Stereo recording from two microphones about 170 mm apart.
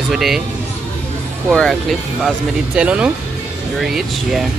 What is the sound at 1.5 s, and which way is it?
Speech, centre (ahead or behind).